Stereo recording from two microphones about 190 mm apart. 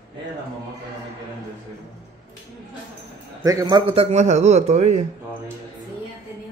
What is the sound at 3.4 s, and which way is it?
A man's voice, 20° right (ahead or behind).